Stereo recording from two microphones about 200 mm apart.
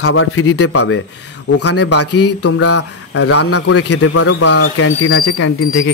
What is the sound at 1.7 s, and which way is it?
Mantra, 60° left (ahead or behind).